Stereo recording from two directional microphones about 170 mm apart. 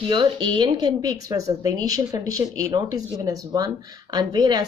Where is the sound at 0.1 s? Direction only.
25° right (ahead or behind).